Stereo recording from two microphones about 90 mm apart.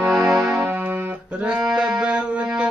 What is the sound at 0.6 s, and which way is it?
Music, 20° right (ahead or behind).